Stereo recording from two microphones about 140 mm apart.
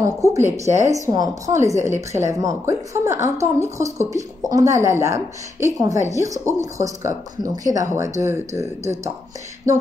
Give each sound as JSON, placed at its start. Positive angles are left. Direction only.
{"t": 0.0, "sound": "a woman's voice", "side_deg": -20}